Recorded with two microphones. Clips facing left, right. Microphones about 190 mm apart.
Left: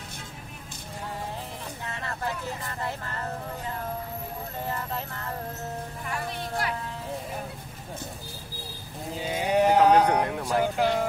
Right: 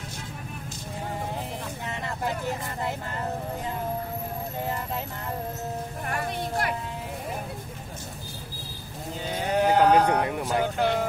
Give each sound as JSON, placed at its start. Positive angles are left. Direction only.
{"t": 1.9, "sound": "vehicle", "side_deg": -15}
{"t": 6.0, "sound": "speech", "side_deg": -55}
{"t": 9.2, "sound": "sheep", "side_deg": 5}
{"t": 10.2, "sound": "a sound", "side_deg": 0}